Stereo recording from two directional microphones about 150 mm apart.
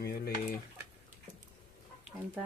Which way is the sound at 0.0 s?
90° left.